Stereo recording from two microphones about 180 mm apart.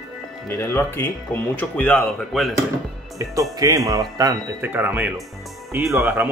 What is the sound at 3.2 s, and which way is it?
Speech, 20° right (ahead or behind).